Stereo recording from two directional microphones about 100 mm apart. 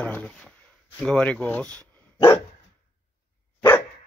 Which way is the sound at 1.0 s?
10° left (ahead or behind).